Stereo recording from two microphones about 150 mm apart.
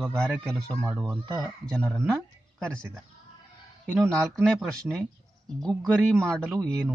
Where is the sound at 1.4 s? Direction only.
5° left (ahead or behind).